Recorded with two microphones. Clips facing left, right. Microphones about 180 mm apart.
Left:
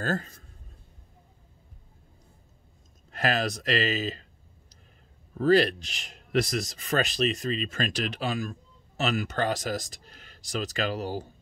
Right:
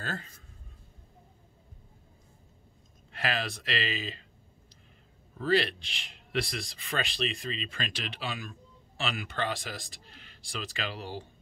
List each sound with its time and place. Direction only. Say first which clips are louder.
0.0 s a man's voice: left 9 dB; 40° left (ahead or behind)
3.1 s speech: left 6 dB; 40° left (ahead or behind)
5.4 s speech: left 6 dB; 45° left (ahead or behind)